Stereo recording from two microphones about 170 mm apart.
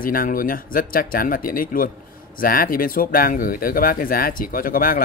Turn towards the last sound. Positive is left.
turn(degrees=60)  # may be behind; listen again after turning